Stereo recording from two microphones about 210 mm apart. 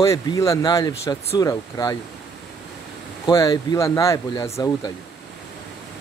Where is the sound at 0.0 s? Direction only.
15° left (ahead or behind).